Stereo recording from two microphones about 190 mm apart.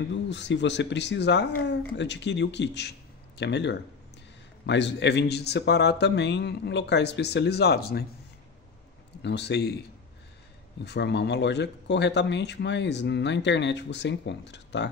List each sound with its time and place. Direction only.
0.3 s a man's voice: 70° left (ahead or behind)
9.2 s a man's voice: 65° left (ahead or behind)